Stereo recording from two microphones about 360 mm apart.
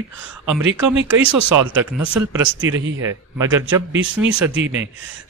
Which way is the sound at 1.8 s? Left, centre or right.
Centre.